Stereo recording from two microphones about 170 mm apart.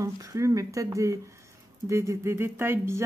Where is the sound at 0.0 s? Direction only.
20° right (ahead or behind).